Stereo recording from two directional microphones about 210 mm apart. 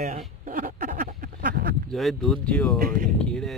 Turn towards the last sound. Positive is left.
turn(degrees=0)  # may be behind; listen again after turning